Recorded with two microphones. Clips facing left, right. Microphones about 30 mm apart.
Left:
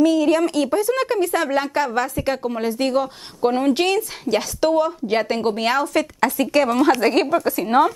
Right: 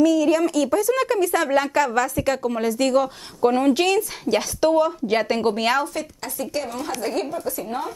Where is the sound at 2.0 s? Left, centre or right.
Left.